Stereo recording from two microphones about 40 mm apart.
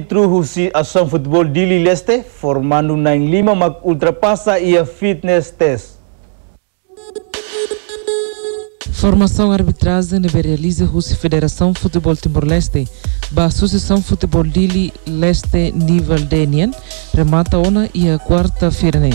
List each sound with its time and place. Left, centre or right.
0.1 s a man's voice: left
7.2 s music: left
9.8 s speech: left